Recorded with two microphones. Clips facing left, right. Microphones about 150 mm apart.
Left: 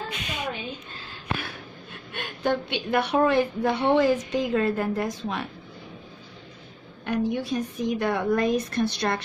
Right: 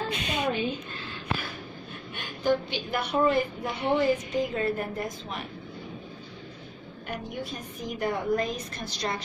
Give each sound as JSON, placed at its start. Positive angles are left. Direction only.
{"t": 0.2, "sound": "a sound", "side_deg": -30}
{"t": 2.1, "sound": "a woman's voice", "side_deg": 65}
{"t": 7.1, "sound": "a woman's voice", "side_deg": 80}